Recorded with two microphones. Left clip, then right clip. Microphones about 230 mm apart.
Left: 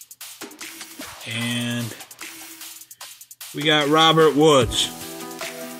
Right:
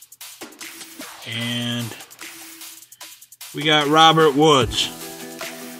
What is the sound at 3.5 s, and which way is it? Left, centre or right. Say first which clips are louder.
Speech: right 2 dB; centre.